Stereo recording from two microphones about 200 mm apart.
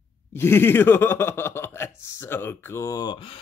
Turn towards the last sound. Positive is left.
turn(degrees=25)  # may be behind; listen again after turning